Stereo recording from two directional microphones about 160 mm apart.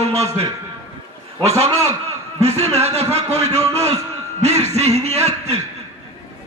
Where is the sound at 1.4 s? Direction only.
40° right (ahead or behind).